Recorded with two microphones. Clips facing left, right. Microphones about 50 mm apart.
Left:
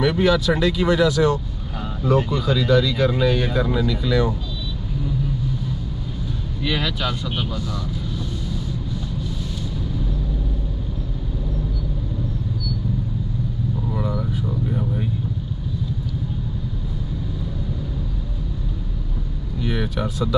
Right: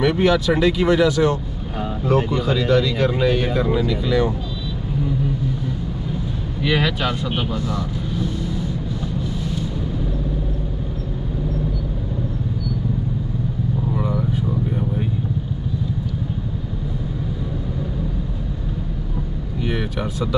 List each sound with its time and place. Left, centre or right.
0.0 s speech: right
6.6 s speech: right
13.9 s vehicle: right
19.6 s vehicle: right